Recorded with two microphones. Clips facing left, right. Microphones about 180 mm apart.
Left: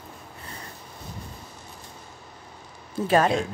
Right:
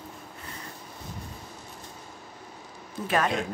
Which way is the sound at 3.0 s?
30° left (ahead or behind).